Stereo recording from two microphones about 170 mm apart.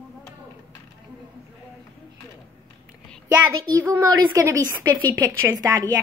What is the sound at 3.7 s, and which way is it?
A woman's voice, 20° right (ahead or behind).